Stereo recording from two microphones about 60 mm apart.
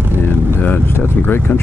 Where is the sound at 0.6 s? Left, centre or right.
Left.